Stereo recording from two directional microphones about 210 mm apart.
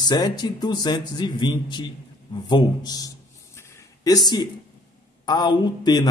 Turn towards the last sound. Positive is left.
turn(degrees=20)  # may be behind; listen again after turning